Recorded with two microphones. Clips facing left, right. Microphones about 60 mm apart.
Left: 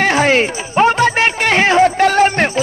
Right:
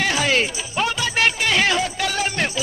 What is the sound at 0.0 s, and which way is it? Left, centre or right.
Music, left.